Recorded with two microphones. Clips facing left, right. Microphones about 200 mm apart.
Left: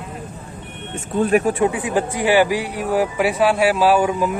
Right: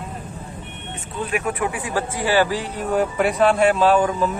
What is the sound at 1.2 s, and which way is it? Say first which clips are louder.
Speech: left 8 dB; 40° left (ahead or behind).